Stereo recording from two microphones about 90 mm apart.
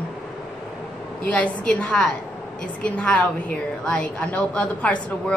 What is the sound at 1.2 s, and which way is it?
A woman's voice, 15° left (ahead or behind).